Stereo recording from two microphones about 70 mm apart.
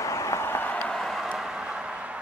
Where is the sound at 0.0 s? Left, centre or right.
Left.